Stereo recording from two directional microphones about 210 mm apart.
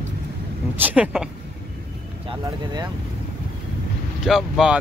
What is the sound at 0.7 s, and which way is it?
Speech, 10° right (ahead or behind).